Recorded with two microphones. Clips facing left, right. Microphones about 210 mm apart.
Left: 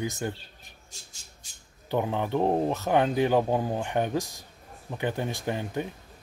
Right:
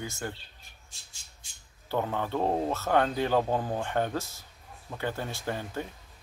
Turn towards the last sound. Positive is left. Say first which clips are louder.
# left 4 dB
turn(degrees=15)  # may be behind; listen again after turning